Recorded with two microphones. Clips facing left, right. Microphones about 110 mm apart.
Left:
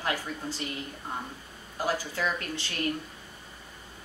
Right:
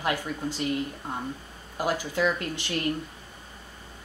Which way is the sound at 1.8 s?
15° right (ahead or behind).